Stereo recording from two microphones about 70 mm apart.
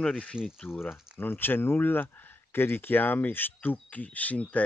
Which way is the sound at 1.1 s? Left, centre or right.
Left.